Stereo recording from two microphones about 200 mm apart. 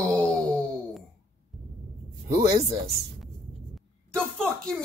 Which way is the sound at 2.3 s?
15° right (ahead or behind).